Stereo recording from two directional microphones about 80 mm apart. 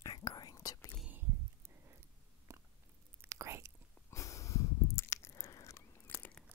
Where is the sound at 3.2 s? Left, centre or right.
Right.